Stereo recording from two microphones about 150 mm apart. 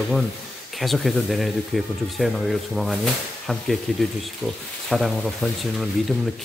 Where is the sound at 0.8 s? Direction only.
Centre (ahead or behind).